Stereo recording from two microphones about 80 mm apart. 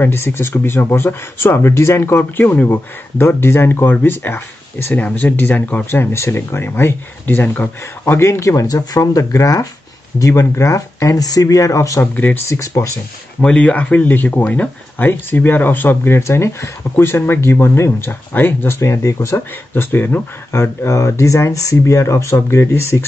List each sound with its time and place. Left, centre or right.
0.1 s speech: left
5.9 s speech: left
8.0 s speech: left
12.0 s speech: left
12.4 s speech: left
13.4 s speech: centre; by 19.4 s left
19.7 s speech: left